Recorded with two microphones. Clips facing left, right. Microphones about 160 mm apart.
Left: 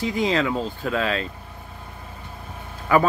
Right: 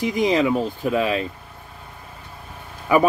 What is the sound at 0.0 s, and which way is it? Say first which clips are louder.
Speech: right 3 dB; 15° right (ahead or behind).